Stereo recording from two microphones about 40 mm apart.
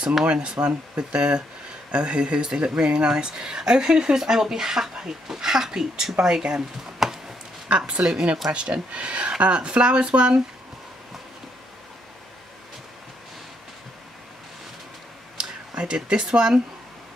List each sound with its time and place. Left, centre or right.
0.2 s speech: right
7.0 s a sound: centre
7.6 s a woman's voice: right
8.0 s speech: centre
8.5 s speech: right
15.7 s speech: right